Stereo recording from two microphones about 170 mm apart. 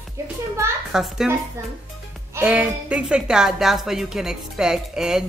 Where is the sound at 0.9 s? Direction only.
5° right (ahead or behind).